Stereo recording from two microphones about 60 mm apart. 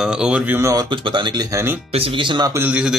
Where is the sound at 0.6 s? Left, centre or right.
Right.